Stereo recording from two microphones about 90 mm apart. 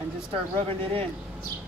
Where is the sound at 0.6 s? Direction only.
90° right.